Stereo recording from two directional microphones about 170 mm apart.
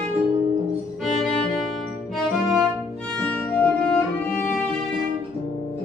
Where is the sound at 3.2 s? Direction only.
5° left (ahead or behind).